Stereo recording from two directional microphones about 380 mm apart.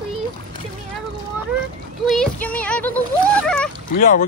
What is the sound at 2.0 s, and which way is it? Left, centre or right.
Speech, centre.